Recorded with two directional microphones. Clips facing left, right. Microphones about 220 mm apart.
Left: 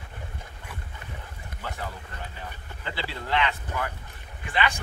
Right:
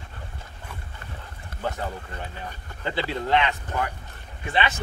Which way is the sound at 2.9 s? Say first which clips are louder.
Right 6 dB; 20° right (ahead or behind).